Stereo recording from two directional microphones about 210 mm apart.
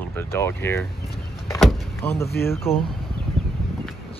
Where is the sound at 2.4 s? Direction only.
10° left (ahead or behind).